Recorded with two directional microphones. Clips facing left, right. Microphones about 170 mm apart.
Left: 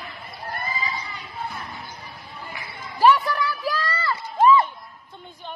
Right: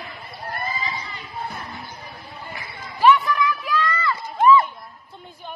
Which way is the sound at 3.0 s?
40° left (ahead or behind).